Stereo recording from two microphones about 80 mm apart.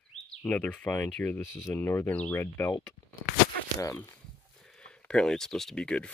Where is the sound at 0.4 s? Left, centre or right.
Centre.